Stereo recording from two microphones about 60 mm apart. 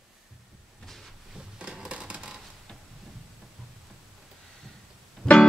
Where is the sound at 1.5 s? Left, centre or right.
Centre.